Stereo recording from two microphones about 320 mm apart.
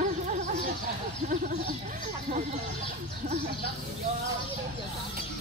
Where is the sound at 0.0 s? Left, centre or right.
Right.